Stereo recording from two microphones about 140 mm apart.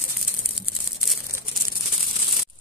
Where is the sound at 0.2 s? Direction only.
5° right (ahead or behind).